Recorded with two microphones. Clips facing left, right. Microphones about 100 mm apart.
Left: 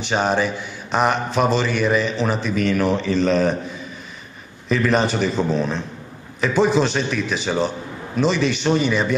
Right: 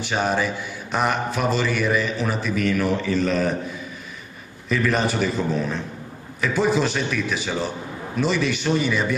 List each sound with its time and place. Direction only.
0.0 s a man's voice: 20° left (ahead or behind)
4.6 s a man's voice: 20° left (ahead or behind)